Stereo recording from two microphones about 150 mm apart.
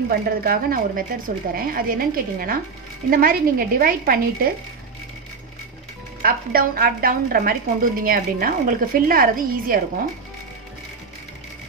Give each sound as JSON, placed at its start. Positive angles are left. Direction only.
{"t": 0.1, "sound": "a woman's voice", "side_deg": -85}
{"t": 6.2, "sound": "a woman's voice", "side_deg": -75}